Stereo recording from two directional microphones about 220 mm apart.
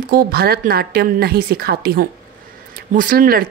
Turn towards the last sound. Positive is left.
turn(degrees=-40)  # may be behind; listen again after turning